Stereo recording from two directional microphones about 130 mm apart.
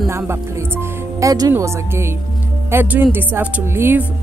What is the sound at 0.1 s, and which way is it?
Speech, 20° right (ahead or behind).